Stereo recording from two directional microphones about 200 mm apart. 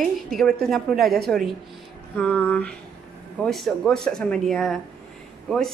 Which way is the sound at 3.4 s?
Centre (ahead or behind).